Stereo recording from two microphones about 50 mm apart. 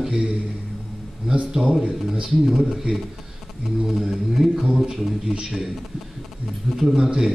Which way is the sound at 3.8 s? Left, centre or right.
Centre.